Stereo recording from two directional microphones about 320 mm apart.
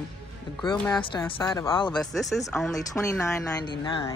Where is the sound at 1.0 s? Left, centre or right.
Centre.